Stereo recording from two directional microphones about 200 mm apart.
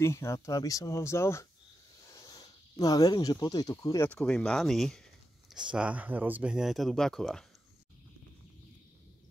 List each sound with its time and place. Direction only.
0.0 s speech: 15° left (ahead or behind)
2.1 s a sound: 20° left (ahead or behind)
2.8 s speech: 20° left (ahead or behind); by 7.4 s centre (ahead or behind)